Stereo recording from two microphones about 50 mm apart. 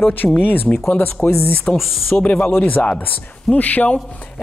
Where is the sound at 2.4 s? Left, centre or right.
Left.